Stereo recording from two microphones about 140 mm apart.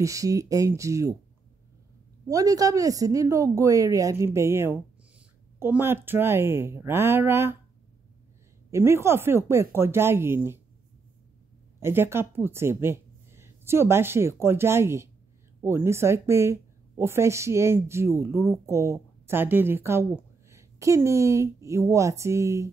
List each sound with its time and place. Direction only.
0.0 s speech: 25° right (ahead or behind)
2.2 s speech: 25° right (ahead or behind)
8.6 s speech: 20° right (ahead or behind)
11.8 s speech: 15° right (ahead or behind)